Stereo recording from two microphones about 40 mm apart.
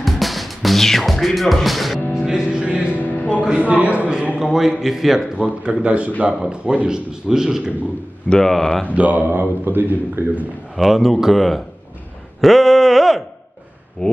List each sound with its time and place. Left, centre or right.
0.0 s music: centre
2.1 s music: centre
2.6 s speech: right
3.0 s music: left
3.5 s a man's voice: right
4.4 s a man's voice: centre
5.4 s a man's voice: right
6.4 s speech: right
8.4 s speech: centre
8.9 s a man's voice: right
10.2 s a man's voice: right
10.8 s speech: centre
14.0 s speech: left